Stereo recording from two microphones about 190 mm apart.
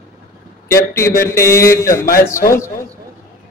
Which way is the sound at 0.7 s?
15° left (ahead or behind).